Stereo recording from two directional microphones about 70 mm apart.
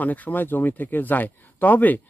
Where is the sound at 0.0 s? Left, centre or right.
Left.